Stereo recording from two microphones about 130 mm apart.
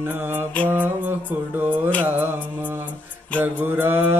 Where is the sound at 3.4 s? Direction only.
15° right (ahead or behind).